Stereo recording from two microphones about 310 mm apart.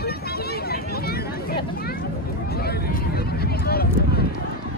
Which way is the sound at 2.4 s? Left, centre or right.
Left.